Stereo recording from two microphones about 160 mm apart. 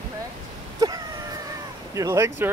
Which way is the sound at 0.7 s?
25° right (ahead or behind).